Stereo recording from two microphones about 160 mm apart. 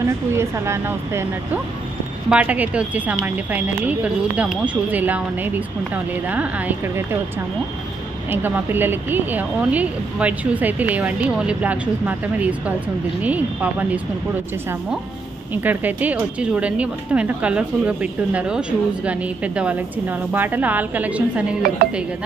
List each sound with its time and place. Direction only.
0.0 s speech: 15° right (ahead or behind)
8.3 s speech: 10° right (ahead or behind)
15.5 s speech: 10° right (ahead or behind)